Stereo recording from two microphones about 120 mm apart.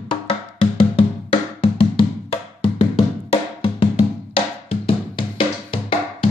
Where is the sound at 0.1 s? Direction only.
45° left (ahead or behind).